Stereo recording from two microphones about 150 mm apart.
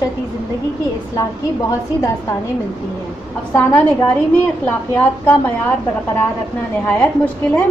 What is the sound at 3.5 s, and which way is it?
Speech, 15° left (ahead or behind).